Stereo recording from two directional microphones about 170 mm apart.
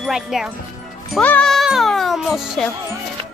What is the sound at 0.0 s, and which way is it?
Speech, 5° right (ahead or behind).